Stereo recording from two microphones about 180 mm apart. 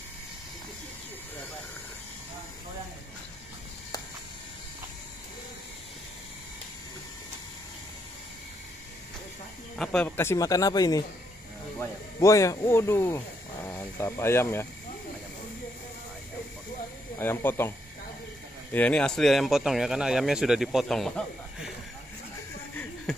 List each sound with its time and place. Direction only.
9.8 s speech: 5° left (ahead or behind)
17.2 s speech: 10° left (ahead or behind)